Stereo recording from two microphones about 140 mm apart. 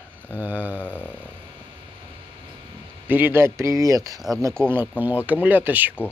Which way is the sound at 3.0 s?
15° right (ahead or behind).